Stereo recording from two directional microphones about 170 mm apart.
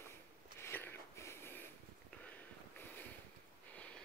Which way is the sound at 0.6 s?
10° left (ahead or behind).